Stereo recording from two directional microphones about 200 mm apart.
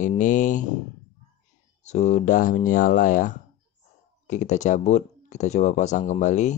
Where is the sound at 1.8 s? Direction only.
35° left (ahead or behind).